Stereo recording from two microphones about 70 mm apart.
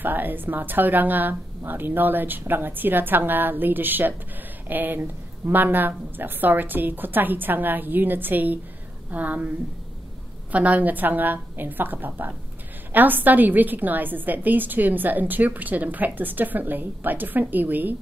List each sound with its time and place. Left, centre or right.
0.0 s a woman's voice: right
10.5 s a woman's voice: right